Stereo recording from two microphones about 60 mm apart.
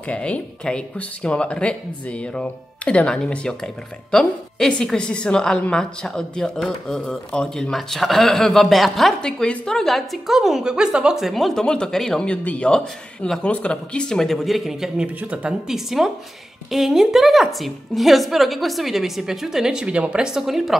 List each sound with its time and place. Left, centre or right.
0.0 s speech: left; by 9.1 s centre
9.2 s a woman's voice: centre
11.6 s speech: centre
12.3 s speech: centre
15.1 s speech: centre
15.7 s a woman's voice: centre
20.2 s a woman's voice: centre